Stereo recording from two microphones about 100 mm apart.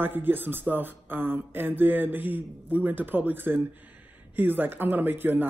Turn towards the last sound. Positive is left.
turn(degrees=-20)  # may be behind; listen again after turning